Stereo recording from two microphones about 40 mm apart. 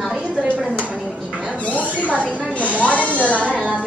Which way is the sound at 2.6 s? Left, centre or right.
Right.